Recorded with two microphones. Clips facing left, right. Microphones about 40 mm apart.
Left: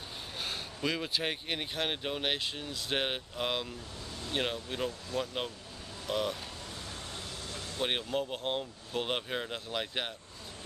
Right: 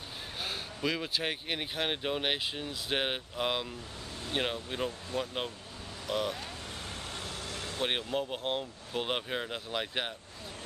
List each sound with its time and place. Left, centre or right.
0.4 s speech: centre
7.1 s vehicle: right
7.8 s speech: centre